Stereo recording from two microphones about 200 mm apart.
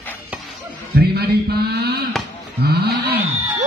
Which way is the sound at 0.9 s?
50° right (ahead or behind).